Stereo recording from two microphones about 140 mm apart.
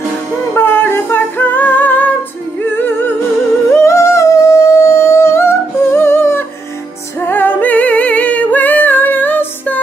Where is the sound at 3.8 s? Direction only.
20° left (ahead or behind).